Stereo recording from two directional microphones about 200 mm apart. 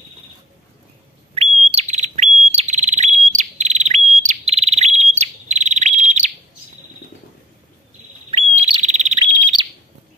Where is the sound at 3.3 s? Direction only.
35° right (ahead or behind).